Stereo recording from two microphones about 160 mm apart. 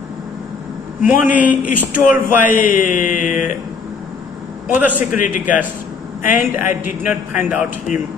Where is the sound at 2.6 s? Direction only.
55° left (ahead or behind).